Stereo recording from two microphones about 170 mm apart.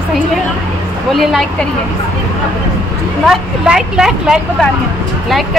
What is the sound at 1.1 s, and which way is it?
Speech, centre (ahead or behind).